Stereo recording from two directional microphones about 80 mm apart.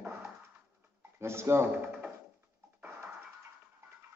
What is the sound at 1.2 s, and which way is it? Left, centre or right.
Speech, right.